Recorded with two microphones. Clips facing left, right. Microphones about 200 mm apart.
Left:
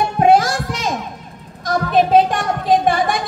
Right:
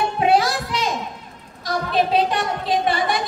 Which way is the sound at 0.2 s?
45° left (ahead or behind).